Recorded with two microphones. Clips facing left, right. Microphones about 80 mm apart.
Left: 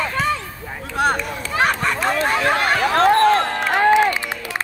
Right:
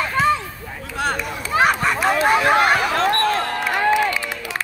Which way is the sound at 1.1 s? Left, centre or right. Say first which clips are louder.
Right 1 dB; centre.